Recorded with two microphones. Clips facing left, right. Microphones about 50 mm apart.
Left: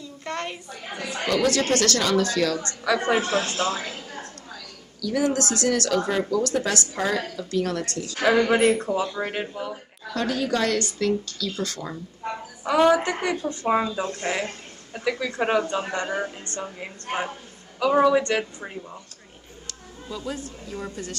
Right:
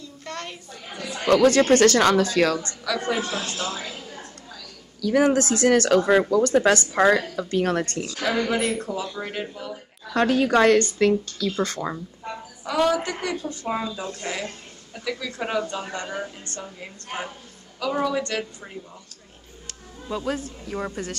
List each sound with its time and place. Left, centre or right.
0.2 s speech: left
1.3 s speech: right
2.8 s speech: left
3.2 s speech: left
5.2 s speech: right
5.7 s speech: right
8.1 s speech: left
10.1 s speech: right
12.3 s a woman's voice: centre
20.1 s speech: right